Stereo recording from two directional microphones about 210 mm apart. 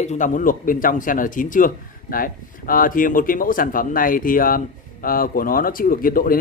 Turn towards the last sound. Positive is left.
turn(degrees=40)  # may be behind; listen again after turning